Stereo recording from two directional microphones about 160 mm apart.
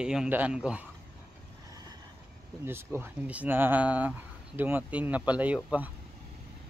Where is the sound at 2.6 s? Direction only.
15° right (ahead or behind).